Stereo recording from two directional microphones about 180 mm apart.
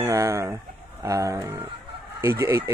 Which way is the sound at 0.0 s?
15° right (ahead or behind).